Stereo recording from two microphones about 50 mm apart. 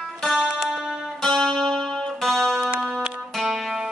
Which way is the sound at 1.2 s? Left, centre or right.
Centre.